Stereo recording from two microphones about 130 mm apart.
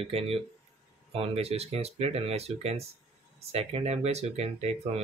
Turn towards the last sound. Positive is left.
turn(degrees=-55)  # may be behind; listen again after turning